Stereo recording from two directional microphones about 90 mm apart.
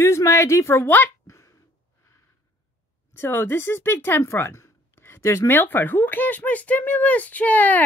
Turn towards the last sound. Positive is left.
turn(degrees=20)  # may be behind; listen again after turning